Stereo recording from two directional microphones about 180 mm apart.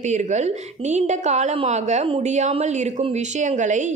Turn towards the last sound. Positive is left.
turn(degrees=-45)  # may be behind; listen again after turning